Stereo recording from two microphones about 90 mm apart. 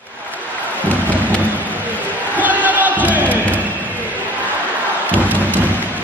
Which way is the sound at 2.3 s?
20° right (ahead or behind).